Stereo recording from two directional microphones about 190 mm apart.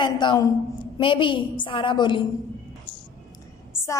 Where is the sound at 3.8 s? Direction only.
15° left (ahead or behind).